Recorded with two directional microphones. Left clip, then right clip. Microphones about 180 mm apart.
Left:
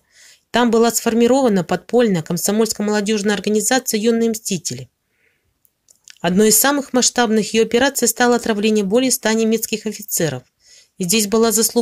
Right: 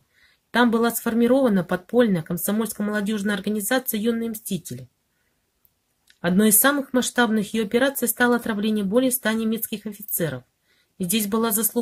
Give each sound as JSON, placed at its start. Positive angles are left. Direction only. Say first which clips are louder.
{"t": 0.5, "sound": "speech", "louder": "left 5 dB", "side_deg": 35}
{"t": 6.0, "sound": "speech", "louder": "left 7 dB", "side_deg": 35}